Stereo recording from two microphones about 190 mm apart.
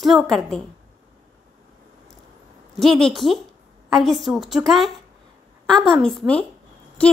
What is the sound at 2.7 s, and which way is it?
A woman's voice, centre (ahead or behind).